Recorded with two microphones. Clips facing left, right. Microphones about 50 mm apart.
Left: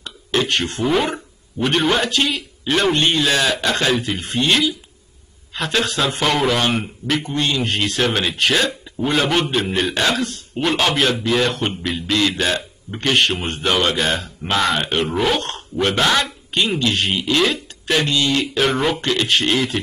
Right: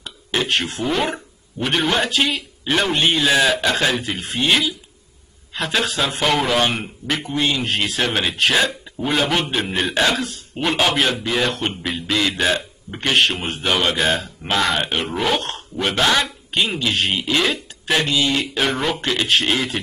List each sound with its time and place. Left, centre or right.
0.0 s a man's voice: centre